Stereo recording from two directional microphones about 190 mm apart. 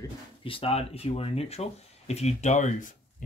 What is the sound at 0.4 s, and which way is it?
Speech, 30° left (ahead or behind).